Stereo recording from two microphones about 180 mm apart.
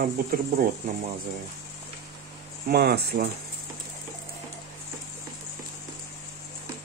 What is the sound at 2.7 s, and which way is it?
Speech, 60° right (ahead or behind).